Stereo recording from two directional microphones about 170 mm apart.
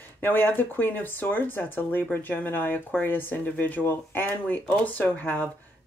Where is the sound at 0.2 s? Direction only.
10° left (ahead or behind).